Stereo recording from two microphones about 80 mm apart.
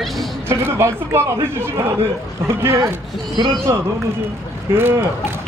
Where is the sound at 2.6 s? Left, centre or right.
Right.